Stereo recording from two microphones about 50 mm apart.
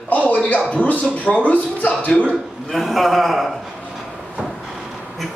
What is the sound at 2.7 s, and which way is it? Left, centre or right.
Speech, centre.